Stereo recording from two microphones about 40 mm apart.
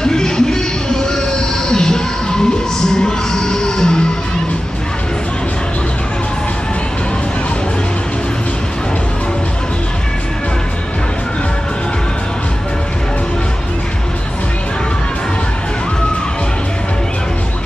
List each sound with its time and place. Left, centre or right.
0.0 s music: centre